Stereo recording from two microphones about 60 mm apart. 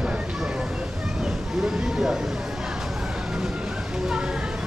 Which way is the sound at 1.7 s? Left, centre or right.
Centre.